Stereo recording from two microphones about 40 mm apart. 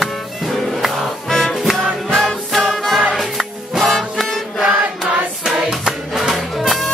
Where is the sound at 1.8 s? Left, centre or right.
Centre.